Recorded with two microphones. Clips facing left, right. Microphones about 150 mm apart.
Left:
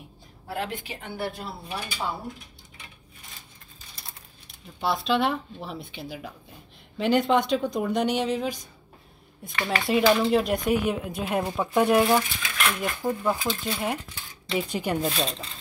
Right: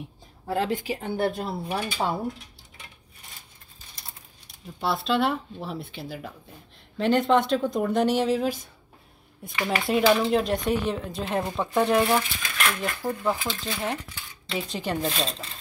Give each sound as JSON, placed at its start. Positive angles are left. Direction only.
{"t": 0.5, "sound": "speech", "side_deg": -40}
{"t": 4.7, "sound": "speech", "side_deg": 0}